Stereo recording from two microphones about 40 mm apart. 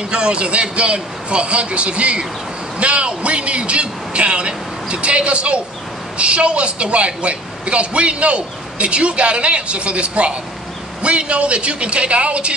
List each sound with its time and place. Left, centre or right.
0.1 s a woman's voice: right